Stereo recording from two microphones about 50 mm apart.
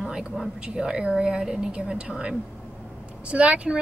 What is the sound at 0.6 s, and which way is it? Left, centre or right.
A woman's voice, centre.